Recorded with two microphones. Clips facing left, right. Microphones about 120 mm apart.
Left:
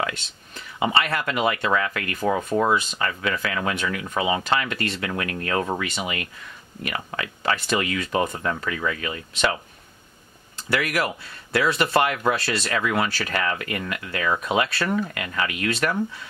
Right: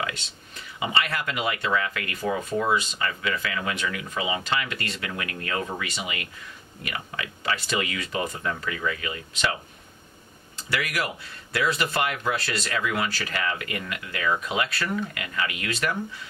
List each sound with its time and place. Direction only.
0.7 s speech: 40° left (ahead or behind)
10.7 s speech: 55° left (ahead or behind)